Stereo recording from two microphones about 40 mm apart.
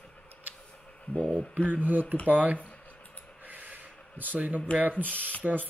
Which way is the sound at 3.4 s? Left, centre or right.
Right.